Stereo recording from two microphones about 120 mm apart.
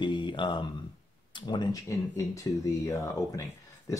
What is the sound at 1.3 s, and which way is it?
Speech, 35° left (ahead or behind).